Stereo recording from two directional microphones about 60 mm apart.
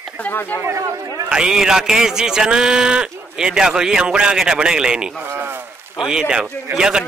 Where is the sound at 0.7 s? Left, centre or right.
Right.